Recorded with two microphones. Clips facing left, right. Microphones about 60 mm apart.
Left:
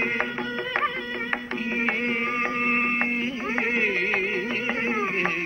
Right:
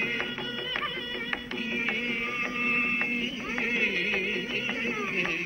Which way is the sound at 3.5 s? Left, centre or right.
Left.